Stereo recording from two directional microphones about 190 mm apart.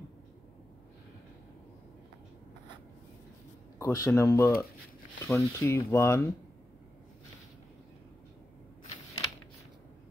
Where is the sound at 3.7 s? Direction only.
15° left (ahead or behind).